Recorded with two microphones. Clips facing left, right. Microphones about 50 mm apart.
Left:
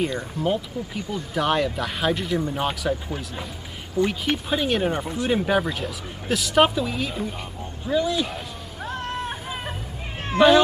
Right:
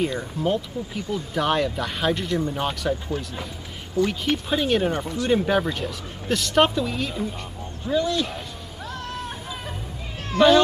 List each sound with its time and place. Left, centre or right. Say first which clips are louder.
0.0 s speech: even; centre
8.8 s hubbub: left 4 dB; left
10.3 s speech: left 1 dB; left